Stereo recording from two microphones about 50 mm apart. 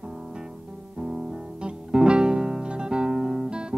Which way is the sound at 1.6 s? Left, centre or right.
Centre.